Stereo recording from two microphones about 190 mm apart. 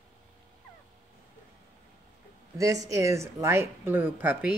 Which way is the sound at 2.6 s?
15° right (ahead or behind).